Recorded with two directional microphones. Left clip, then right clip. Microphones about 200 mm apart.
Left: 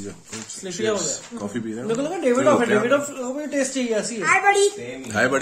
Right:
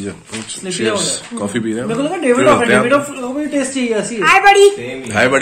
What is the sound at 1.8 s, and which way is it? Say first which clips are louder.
Speech: right 4 dB; 45° left (ahead or behind).